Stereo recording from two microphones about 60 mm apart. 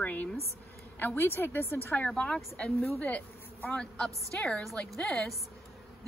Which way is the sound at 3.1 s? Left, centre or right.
Left.